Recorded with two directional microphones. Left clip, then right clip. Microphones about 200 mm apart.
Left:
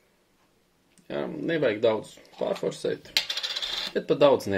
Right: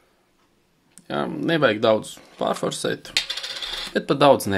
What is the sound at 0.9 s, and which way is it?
Speech, 50° right (ahead or behind).